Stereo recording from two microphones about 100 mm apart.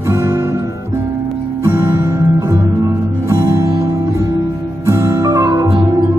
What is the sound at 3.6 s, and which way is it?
Music, 45° right (ahead or behind).